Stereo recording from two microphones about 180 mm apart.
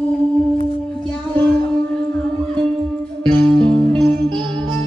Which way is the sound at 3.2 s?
5° left (ahead or behind).